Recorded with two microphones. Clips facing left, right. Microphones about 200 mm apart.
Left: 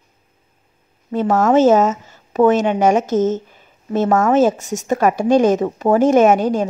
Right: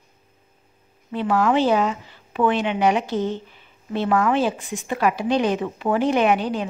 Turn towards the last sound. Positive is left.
turn(degrees=45)  # may be behind; listen again after turning